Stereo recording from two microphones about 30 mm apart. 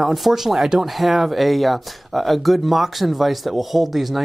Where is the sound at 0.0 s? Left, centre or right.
Centre.